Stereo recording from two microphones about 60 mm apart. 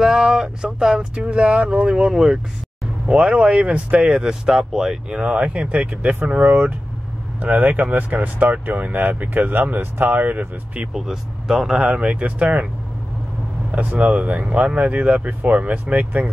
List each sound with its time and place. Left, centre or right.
0.0 s speech: centre; by 10.9 s right
10.9 s speech: centre; by 12.6 s right
13.7 s speech: right